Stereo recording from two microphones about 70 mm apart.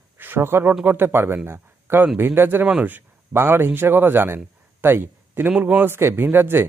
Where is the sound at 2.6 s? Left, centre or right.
Right.